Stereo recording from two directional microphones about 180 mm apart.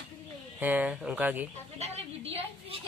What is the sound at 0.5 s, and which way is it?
Speech, 10° right (ahead or behind).